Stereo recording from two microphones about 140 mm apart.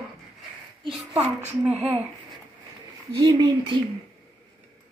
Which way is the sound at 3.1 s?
30° right (ahead or behind).